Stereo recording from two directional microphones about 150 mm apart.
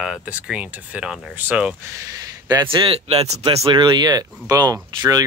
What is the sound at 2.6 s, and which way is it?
Speech, 35° right (ahead or behind).